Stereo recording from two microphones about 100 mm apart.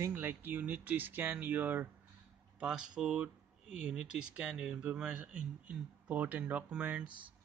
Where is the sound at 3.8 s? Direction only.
10° right (ahead or behind).